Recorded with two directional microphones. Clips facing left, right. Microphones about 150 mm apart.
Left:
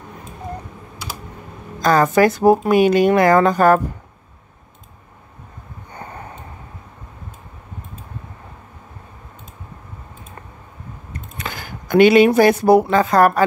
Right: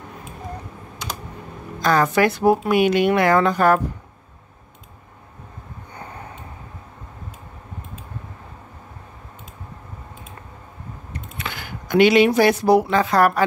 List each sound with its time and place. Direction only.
1.8 s speech: 40° left (ahead or behind)
11.1 s speech: 40° left (ahead or behind)